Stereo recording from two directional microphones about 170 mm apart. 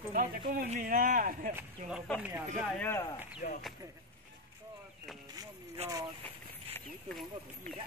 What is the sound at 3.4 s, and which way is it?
Speech, 50° left (ahead or behind).